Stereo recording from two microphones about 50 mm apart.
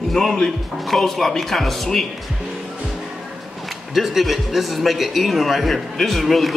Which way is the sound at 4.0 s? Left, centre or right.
Centre.